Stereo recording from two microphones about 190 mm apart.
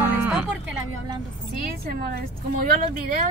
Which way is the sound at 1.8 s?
55° right (ahead or behind).